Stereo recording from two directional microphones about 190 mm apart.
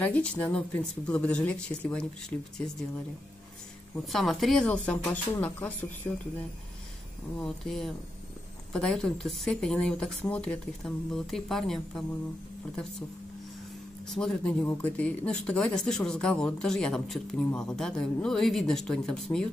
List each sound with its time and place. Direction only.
0.0 s speech: 5° left (ahead or behind)
4.0 s speech: centre (ahead or behind)
7.3 s speech: centre (ahead or behind)
14.0 s speech: 5° left (ahead or behind)